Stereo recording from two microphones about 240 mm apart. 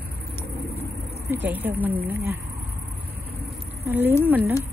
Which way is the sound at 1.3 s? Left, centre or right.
Centre.